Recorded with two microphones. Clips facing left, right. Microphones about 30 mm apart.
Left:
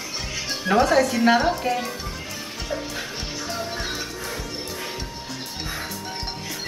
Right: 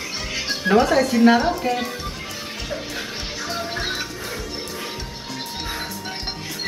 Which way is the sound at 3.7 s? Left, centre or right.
Right.